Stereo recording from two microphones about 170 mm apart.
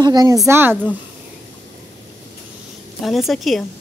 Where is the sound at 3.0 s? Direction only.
Centre (ahead or behind).